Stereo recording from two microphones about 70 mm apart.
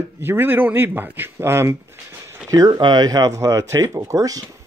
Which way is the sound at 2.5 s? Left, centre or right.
Right.